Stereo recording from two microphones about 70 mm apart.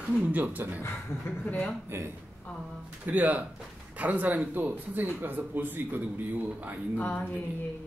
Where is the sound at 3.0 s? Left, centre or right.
Right.